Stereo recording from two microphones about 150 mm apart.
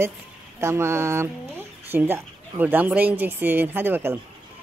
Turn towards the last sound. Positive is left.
turn(degrees=-15)  # may be behind; listen again after turning